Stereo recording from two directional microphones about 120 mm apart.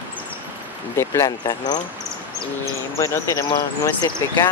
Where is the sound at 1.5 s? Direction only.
35° left (ahead or behind).